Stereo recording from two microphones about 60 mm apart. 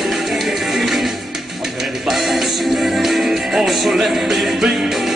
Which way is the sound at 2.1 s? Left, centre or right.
Centre.